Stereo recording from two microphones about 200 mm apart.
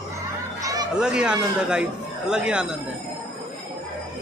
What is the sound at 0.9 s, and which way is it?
A man's voice, 5° right (ahead or behind).